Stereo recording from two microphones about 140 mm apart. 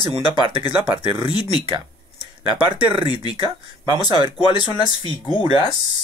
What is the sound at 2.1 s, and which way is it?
Speech, 40° right (ahead or behind).